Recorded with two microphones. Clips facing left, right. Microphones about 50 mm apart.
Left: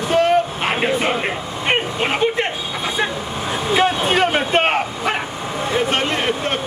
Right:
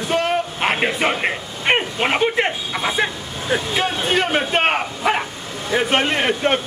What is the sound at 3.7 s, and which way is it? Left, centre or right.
Speech, centre.